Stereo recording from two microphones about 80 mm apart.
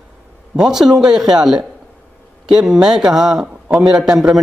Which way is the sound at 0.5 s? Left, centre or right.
Centre.